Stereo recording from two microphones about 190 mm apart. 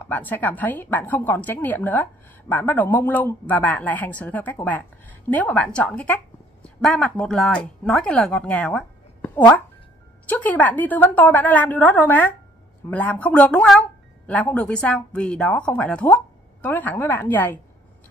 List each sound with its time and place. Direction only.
0.0 s a woman's voice: 10° left (ahead or behind)